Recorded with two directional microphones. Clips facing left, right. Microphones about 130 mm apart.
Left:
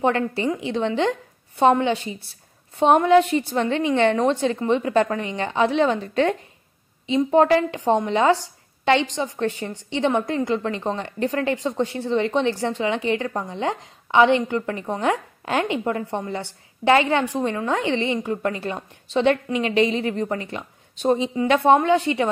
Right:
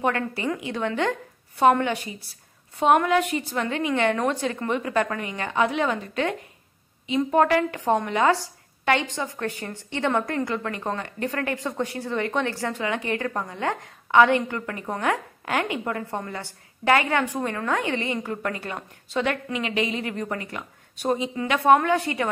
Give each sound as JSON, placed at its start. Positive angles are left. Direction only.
{"t": 0.0, "sound": "speech", "side_deg": 25}